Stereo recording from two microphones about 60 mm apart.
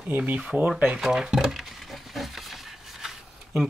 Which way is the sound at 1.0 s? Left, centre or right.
Centre.